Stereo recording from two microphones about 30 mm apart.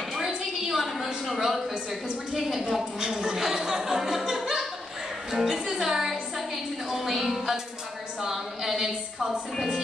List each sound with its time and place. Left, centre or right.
0.4 s a sound: centre
1.7 s music: centre
3.1 s a woman's voice: centre
3.4 s music: centre
7.0 s speech: centre
8.2 s music: centre